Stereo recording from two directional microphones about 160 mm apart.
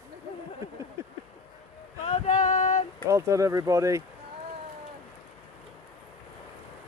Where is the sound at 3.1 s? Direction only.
20° right (ahead or behind).